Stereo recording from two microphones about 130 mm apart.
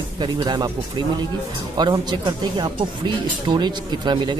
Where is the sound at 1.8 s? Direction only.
35° right (ahead or behind).